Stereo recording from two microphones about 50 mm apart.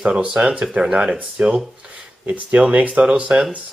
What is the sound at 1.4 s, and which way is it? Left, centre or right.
Speech, right.